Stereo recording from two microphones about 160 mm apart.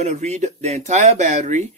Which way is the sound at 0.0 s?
45° right (ahead or behind).